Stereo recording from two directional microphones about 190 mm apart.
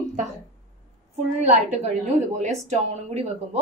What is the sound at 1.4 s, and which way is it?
A woman's voice, 35° right (ahead or behind).